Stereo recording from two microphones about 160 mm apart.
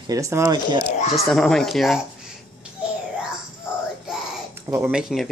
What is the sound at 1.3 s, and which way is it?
Speech, 5° left (ahead or behind).